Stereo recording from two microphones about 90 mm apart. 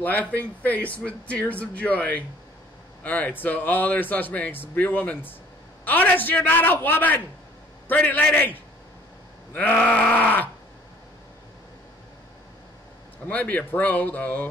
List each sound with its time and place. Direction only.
0.0 s speech: 20° left (ahead or behind)
9.5 s a sound: 15° left (ahead or behind)
9.8 s speech: 15° left (ahead or behind)
13.3 s speech: 20° left (ahead or behind)